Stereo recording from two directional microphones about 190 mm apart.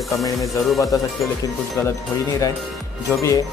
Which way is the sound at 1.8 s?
15° left (ahead or behind).